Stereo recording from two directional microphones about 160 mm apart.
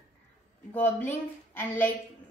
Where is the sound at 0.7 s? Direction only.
10° left (ahead or behind).